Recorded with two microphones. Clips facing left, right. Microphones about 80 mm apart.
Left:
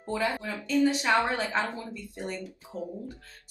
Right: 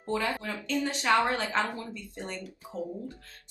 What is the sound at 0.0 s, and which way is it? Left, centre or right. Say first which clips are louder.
Speech: left 1 dB; centre.